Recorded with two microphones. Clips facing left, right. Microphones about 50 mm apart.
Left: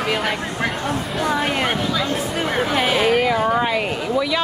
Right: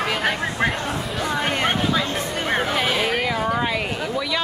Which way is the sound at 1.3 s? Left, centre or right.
Centre.